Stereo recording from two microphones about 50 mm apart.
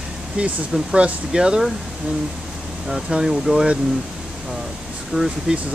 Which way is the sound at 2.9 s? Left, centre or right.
Centre.